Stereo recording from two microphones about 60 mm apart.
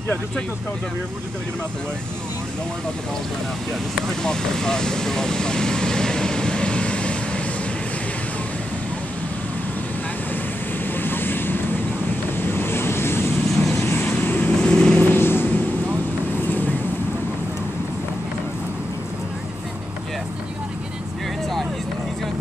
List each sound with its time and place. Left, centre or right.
4.1 s vehicle: centre
11.0 s vehicle: left
12.4 s waves: left
13.5 s vehicle: centre
14.0 s vehicle: left
14.6 s vehicle: centre
15.0 s vehicle: left